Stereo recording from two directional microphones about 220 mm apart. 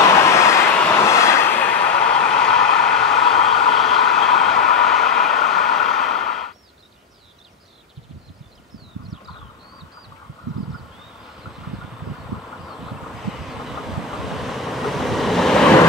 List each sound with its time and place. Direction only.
0.1 s vehicle: 15° left (ahead or behind)
12.6 s vehicle: centre (ahead or behind)